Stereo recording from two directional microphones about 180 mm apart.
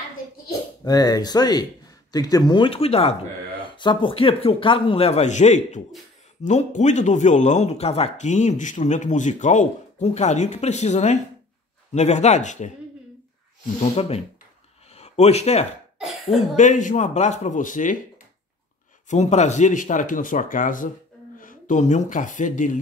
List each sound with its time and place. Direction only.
0.8 s speech: 20° left (ahead or behind); by 12.7 s 40° left (ahead or behind)
13.9 s speech: 35° left (ahead or behind)
16.0 s cough: centre (ahead or behind)
16.5 s speech: 45° left (ahead or behind)
19.0 s speech: 40° left (ahead or behind)